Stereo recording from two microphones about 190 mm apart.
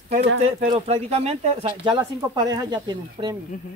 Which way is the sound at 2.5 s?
20° right (ahead or behind).